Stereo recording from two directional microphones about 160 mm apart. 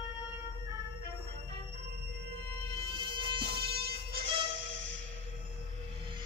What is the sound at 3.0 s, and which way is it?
Music, 30° right (ahead or behind).